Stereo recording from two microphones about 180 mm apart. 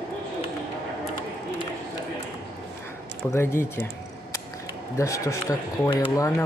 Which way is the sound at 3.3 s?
15° left (ahead or behind).